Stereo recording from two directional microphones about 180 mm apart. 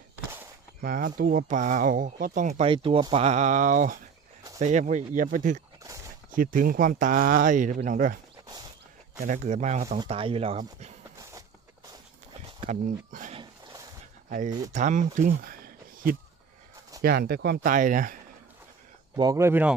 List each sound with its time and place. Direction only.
0.7 s speech: 50° right (ahead or behind)
2.7 s speech: 30° right (ahead or behind); by 8.2 s 45° right (ahead or behind)
9.2 s speech: 45° right (ahead or behind)
12.4 s a sound: 40° right (ahead or behind)
14.7 s speech: 45° right (ahead or behind); by 17.7 s 65° right (ahead or behind)
17.7 s speech: 50° right (ahead or behind)
19.1 s speech: 20° right (ahead or behind)